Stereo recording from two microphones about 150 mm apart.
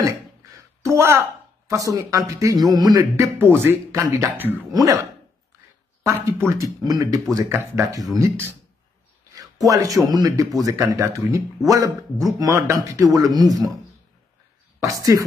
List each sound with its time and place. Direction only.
0.0 s a sound: 20° right (ahead or behind)
1.7 s speech: 20° right (ahead or behind)
3.3 s speech: 15° right (ahead or behind)
6.0 s speech: 15° right (ahead or behind)
9.3 s a sound: 25° right (ahead or behind)
10.1 s speech: 25° right (ahead or behind)
14.8 s speech: 25° right (ahead or behind)